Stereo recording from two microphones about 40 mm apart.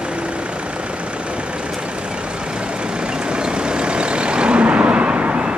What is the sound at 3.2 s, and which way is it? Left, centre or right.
Vehicle, right.